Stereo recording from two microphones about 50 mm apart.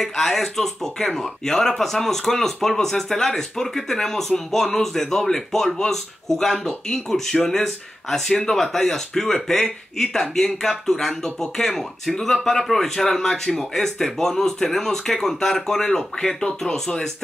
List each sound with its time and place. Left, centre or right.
0.0 s speech: centre